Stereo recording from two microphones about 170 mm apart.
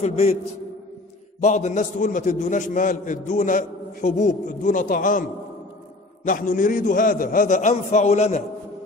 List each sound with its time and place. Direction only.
0.0 s a man's voice: 40° left (ahead or behind)
1.4 s a man's voice: 40° left (ahead or behind)
6.2 s a man's voice: 55° left (ahead or behind)